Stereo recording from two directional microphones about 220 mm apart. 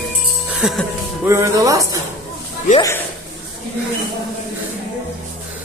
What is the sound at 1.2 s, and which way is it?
Speech, 15° right (ahead or behind).